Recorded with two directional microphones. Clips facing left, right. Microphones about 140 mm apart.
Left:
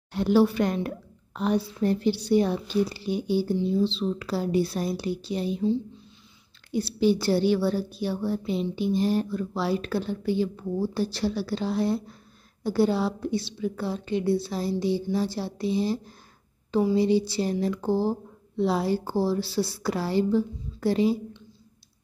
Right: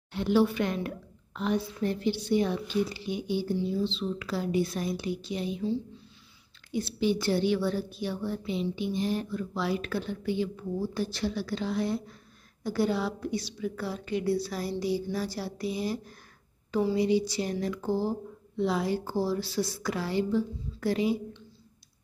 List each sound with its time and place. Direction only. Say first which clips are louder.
0.1 s a woman's voice: left 4 dB; 40° left (ahead or behind)
6.7 s a woman's voice: left 5 dB; 35° left (ahead or behind)